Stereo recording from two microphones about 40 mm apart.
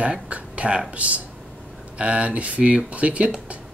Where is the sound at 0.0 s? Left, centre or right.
Right.